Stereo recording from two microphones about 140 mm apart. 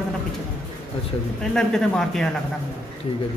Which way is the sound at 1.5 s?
5° left (ahead or behind).